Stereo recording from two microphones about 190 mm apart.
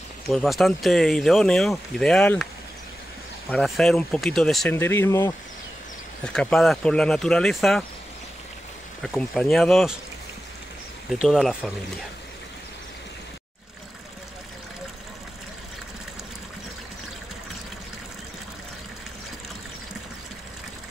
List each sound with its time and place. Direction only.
0.3 s speech: centre (ahead or behind)
3.4 s speech: 5° left (ahead or behind)
4.7 s speech: 10° left (ahead or behind)
6.2 s speech: 5° left (ahead or behind)
9.0 s speech: centre (ahead or behind)
11.1 s speech: centre (ahead or behind)